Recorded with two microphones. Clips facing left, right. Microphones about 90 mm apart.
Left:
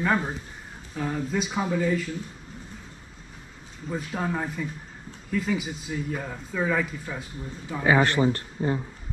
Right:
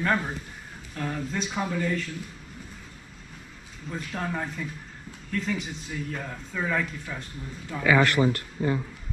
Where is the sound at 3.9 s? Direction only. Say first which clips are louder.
Left 3 dB; 10° left (ahead or behind).